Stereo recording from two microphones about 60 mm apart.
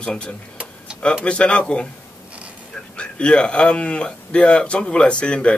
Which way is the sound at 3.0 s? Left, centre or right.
Centre.